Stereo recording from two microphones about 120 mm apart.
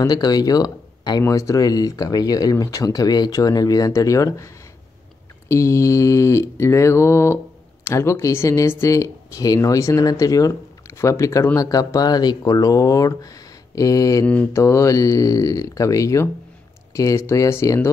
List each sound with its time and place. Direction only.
0.0 s speech: 35° left (ahead or behind)
5.5 s speech: 25° left (ahead or behind)
14.2 s mantra: 10° left (ahead or behind)
14.5 s speech: 25° left (ahead or behind)